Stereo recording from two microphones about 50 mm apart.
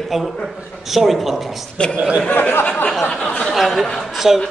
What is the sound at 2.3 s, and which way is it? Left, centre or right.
Speech, left.